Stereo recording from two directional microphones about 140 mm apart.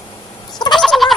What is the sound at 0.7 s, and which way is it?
Fowl, centre (ahead or behind).